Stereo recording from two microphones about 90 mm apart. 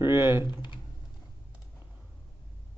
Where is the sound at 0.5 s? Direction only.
60° left (ahead or behind).